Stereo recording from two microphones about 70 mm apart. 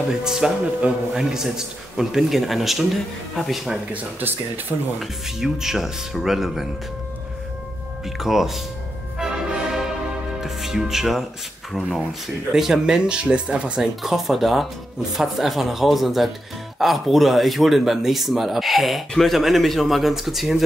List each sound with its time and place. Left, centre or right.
0.2 s a man's voice: centre
3.9 s speech: right
4.9 s speech: centre
8.2 s speech: centre
9.2 s music: centre
10.4 s a man's voice: centre
14.0 s speech: centre